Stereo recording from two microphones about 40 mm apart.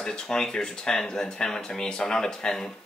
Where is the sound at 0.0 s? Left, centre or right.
Centre.